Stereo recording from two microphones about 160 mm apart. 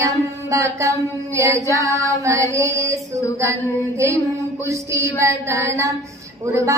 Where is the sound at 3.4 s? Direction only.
20° right (ahead or behind).